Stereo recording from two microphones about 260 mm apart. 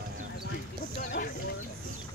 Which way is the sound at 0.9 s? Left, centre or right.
Left.